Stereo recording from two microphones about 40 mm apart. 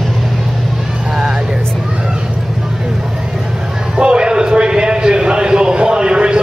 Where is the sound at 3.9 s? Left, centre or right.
Right.